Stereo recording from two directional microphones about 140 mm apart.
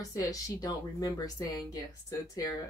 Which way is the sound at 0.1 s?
25° left (ahead or behind).